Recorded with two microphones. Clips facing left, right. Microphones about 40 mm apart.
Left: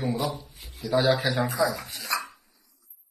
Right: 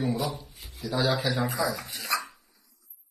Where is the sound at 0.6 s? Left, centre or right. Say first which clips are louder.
Left 1 dB; centre.